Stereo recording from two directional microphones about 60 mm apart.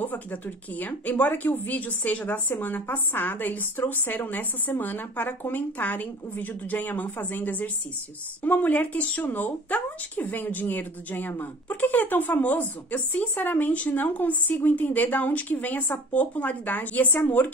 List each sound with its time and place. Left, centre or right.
0.0 s speech: left